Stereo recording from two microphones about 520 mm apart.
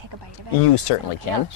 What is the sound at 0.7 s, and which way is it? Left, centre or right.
Speech, left.